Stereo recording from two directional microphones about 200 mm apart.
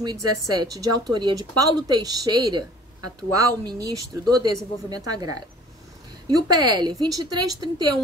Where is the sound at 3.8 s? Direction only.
15° right (ahead or behind).